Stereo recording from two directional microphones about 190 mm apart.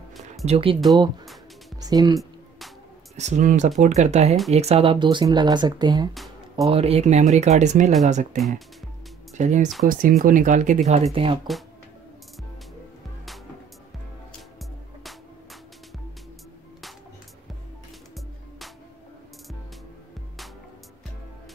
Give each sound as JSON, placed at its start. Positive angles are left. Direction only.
{"t": 0.5, "sound": "speech", "side_deg": -30}
{"t": 1.8, "sound": "music", "side_deg": -20}
{"t": 3.2, "sound": "speech", "side_deg": -40}
{"t": 8.4, "sound": "speech", "side_deg": 0}
{"t": 9.4, "sound": "speech", "side_deg": -40}